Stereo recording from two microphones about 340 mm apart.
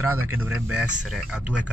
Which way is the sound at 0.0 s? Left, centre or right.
Centre.